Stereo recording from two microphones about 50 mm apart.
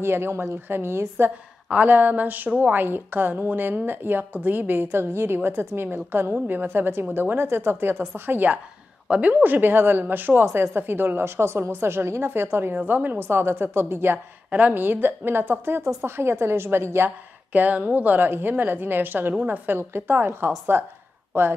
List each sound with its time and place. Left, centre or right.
0.0 s a woman's voice: right
1.9 s a woman's voice: right
8.1 s a woman's voice: right
12.7 s a woman's voice: right
14.1 s a woman's voice: right
17.5 s a woman's voice: right